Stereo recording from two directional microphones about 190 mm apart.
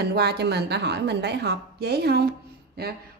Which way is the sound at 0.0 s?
60° right (ahead or behind).